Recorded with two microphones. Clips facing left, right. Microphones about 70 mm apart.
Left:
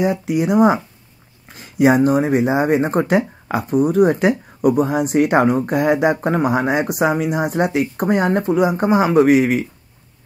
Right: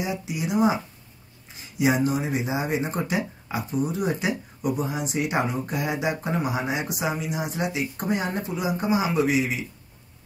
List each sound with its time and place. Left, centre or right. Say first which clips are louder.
0.0 s speech: left 11 dB; left